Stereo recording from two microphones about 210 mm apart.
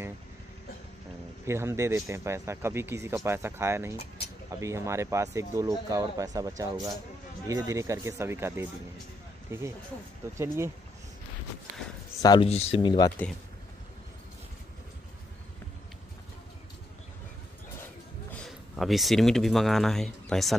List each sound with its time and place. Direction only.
1.4 s speech: 10° right (ahead or behind)
12.2 s speech: 20° left (ahead or behind)
18.4 s speech: centre (ahead or behind)